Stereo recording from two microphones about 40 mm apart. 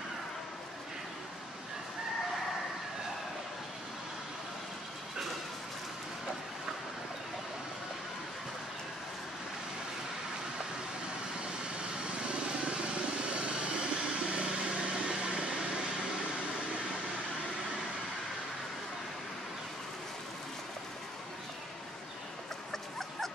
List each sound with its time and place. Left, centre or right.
12.0 s vehicle: right
13.3 s a sound: right
22.7 s dog: centre